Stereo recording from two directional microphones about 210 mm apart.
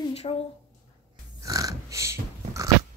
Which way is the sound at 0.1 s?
30° left (ahead or behind).